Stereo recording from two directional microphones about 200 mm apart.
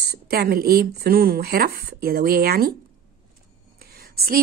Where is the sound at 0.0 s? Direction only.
50° right (ahead or behind).